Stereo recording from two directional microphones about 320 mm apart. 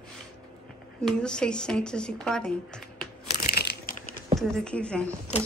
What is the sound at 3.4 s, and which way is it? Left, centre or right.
Crushing, left.